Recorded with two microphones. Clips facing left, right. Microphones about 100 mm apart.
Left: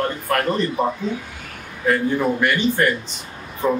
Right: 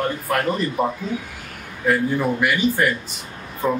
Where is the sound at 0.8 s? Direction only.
5° right (ahead or behind).